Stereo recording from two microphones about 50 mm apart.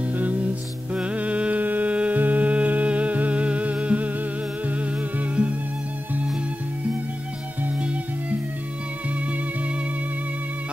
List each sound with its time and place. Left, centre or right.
0.2 s music: right